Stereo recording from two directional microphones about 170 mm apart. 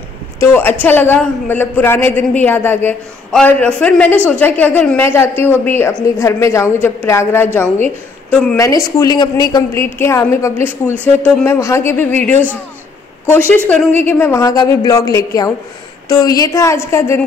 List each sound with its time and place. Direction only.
0.4 s a man's voice: 10° left (ahead or behind)
8.5 s a woman's voice: 20° left (ahead or behind)
13.7 s a woman's voice: 10° left (ahead or behind)